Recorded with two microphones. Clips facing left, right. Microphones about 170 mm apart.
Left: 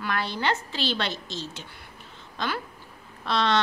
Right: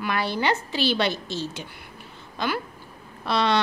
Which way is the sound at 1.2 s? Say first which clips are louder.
Right 5 dB; 60° right (ahead or behind).